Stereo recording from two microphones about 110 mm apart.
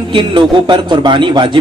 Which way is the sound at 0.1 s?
45° right (ahead or behind).